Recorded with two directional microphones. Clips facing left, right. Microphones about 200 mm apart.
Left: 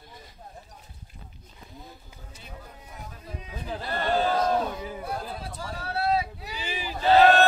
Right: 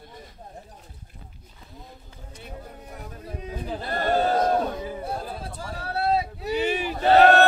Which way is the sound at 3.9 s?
45° right (ahead or behind).